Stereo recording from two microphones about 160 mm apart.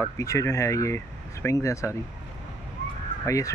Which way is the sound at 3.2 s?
20° left (ahead or behind).